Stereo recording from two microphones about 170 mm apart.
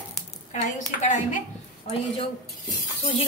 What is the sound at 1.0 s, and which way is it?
Speech, 40° left (ahead or behind).